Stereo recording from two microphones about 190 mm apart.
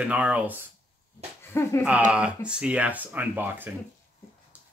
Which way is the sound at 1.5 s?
15° left (ahead or behind).